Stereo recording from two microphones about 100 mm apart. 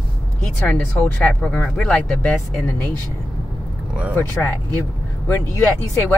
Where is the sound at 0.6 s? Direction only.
15° left (ahead or behind).